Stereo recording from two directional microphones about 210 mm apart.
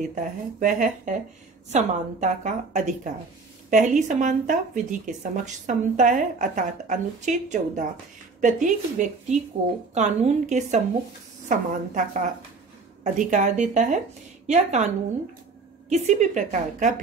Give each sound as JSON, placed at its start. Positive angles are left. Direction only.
{"t": 0.1, "sound": "speech", "side_deg": -40}
{"t": 15.9, "sound": "speech", "side_deg": -35}